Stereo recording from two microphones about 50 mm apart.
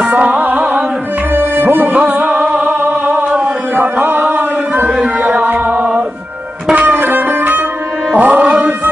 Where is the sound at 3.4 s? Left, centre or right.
Right.